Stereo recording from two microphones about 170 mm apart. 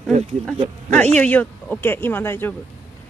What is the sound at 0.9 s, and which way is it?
Speech, 10° left (ahead or behind).